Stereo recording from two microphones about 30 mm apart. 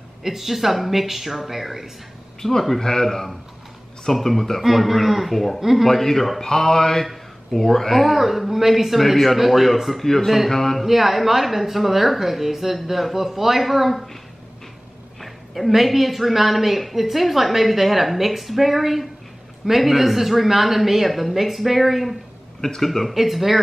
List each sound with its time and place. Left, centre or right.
0.2 s a woman's voice: centre
2.8 s a woman's voice: centre
5.9 s a woman's voice: centre
6.4 s a woman's voice: centre
9.9 s speech: centre
10.8 s a woman's voice: centre
15.1 s a woman's voice: centre
23.1 s a woman's voice: centre